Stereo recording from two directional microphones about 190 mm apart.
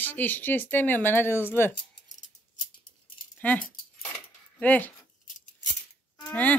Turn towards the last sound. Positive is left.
turn(degrees=10)  # may be behind; listen again after turning